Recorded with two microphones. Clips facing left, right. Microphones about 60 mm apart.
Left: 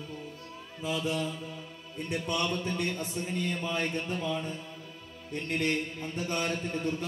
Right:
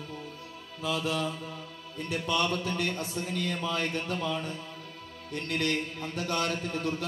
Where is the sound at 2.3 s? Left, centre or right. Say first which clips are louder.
Right 3 dB; right.